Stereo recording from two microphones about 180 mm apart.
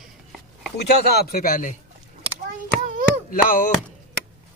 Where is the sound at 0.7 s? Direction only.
60° left (ahead or behind).